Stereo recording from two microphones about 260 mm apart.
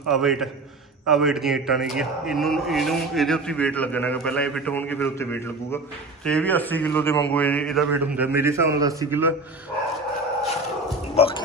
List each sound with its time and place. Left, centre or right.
0.1 s a man's voice: centre
11.1 s speech: left